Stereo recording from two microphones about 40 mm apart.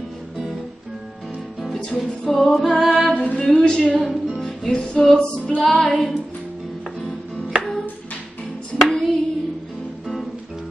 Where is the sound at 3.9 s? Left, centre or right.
Centre.